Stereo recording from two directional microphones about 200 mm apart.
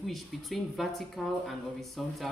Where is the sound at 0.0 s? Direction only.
Centre (ahead or behind).